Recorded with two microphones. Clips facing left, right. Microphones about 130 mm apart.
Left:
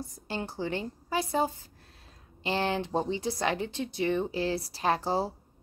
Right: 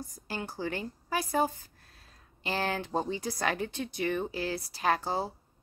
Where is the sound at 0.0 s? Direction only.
25° left (ahead or behind).